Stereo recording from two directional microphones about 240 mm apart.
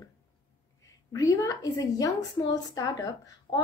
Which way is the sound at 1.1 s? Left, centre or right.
Centre.